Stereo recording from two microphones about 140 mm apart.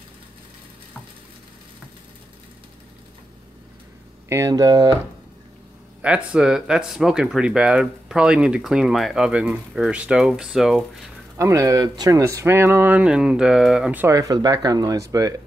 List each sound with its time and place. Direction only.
4.3 s speech: 20° right (ahead or behind)
6.0 s speech: 5° right (ahead or behind)
11.3 s speech: 20° right (ahead or behind); by 14.0 s 5° right (ahead or behind)
14.0 s speech: 25° right (ahead or behind)